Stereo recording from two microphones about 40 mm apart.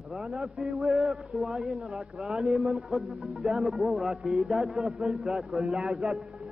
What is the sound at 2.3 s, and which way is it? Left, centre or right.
A man's voice, centre.